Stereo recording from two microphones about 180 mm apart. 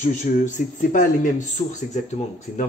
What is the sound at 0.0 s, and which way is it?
Speech, 40° left (ahead or behind).